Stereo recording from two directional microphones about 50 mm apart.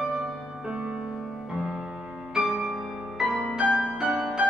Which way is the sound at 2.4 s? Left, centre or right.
Centre.